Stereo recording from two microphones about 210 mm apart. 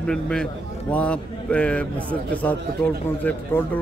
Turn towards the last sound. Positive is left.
turn(degrees=10)  # may be behind; listen again after turning